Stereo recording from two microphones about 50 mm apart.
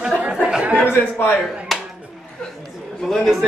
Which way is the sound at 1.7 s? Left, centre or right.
Centre.